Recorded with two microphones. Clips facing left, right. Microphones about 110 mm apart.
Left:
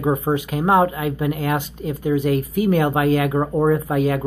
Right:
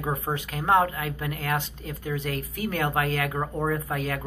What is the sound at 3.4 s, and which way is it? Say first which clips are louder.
Speech: left 9 dB; 25° left (ahead or behind).